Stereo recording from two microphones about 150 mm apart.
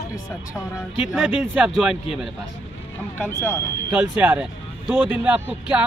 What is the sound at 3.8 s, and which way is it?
Speech, 10° right (ahead or behind).